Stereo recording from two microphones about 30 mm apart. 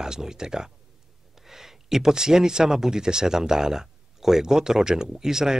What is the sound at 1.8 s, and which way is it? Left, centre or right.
Speech, centre.